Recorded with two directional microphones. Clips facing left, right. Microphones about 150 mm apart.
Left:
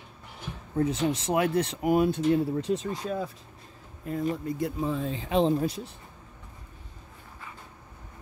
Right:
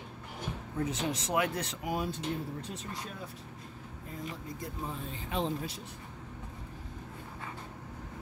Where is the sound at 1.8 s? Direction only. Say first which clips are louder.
Left 11 dB; 60° left (ahead or behind); by 3.2 s 90° left.